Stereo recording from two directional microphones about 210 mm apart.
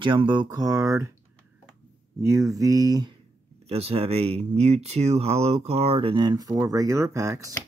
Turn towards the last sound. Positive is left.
turn(degrees=-15)  # may be behind; listen again after turning